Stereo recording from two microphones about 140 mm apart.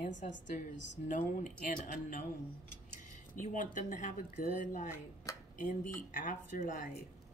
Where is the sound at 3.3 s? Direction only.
65° left (ahead or behind).